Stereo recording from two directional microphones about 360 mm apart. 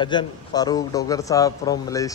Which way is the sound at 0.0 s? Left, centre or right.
Centre.